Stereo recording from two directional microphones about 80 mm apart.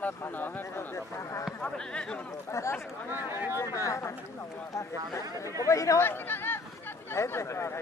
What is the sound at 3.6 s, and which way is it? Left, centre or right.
Speech, left.